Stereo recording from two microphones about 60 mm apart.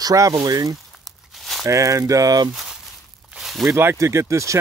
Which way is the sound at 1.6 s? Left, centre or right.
Right.